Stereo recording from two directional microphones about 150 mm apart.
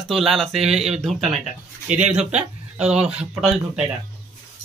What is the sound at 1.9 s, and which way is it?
A man's voice, 50° right (ahead or behind).